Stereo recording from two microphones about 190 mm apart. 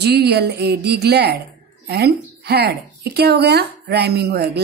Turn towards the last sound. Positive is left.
turn(degrees=-60)  # may be behind; listen again after turning